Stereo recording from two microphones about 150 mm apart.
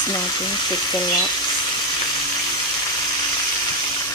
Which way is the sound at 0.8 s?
25° left (ahead or behind).